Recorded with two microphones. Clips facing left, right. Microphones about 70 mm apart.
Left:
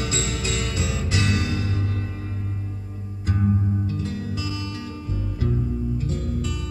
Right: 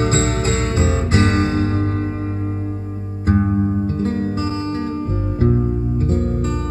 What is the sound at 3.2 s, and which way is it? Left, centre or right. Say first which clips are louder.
Music: right 7 dB; right.